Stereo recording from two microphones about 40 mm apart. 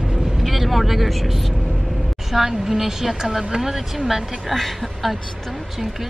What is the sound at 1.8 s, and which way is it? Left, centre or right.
A woman's voice, centre.